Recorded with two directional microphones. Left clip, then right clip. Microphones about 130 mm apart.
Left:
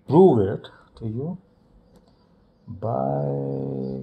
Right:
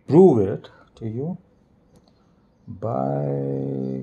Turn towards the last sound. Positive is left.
turn(degrees=-30)  # may be behind; listen again after turning